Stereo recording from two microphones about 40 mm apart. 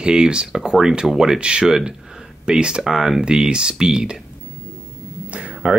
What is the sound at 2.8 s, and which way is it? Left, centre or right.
Speech, centre.